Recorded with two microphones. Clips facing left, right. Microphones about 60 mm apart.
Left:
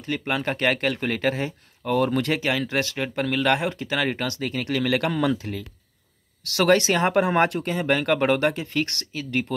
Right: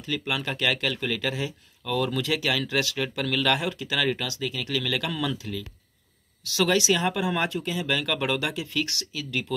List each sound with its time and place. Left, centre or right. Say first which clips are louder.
0.0 s speech: left 3 dB; left
4.3 s speech: left 3 dB; left
6.4 s speech: left 4 dB; left
7.8 s speech: left 7 dB; left